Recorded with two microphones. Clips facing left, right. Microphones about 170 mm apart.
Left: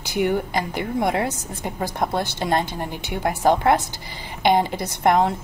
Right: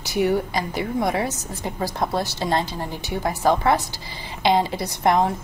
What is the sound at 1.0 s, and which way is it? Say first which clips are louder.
A woman's voice: left 1 dB; 60° left (ahead or behind).